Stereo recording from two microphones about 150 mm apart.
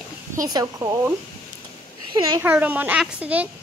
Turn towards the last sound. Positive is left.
turn(degrees=-10)  # may be behind; listen again after turning